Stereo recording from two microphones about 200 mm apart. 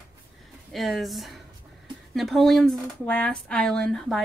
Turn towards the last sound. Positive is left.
turn(degrees=0)  # may be behind; listen again after turning